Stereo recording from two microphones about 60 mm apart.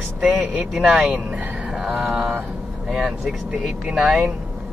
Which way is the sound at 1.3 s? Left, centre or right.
Centre.